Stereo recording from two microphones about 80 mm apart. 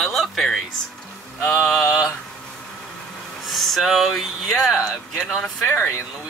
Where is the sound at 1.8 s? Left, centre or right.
Left.